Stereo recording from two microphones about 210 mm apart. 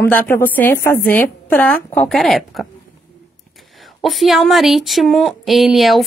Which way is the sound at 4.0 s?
Centre (ahead or behind).